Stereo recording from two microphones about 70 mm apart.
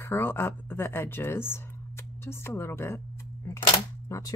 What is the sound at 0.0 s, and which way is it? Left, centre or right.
A woman's voice, left.